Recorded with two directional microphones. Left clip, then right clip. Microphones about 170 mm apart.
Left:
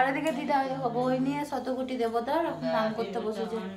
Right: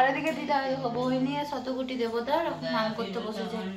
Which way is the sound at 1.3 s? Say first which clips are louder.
Even; 90° left.